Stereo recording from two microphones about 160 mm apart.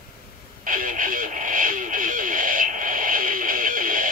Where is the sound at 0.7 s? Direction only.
60° right (ahead or behind).